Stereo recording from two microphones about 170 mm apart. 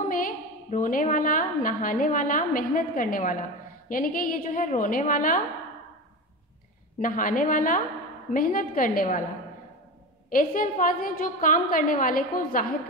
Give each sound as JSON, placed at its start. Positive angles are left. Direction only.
{"t": 0.1, "sound": "a woman's voice", "side_deg": 55}
{"t": 7.0, "sound": "a woman's voice", "side_deg": 55}
{"t": 10.3, "sound": "a woman's voice", "side_deg": 55}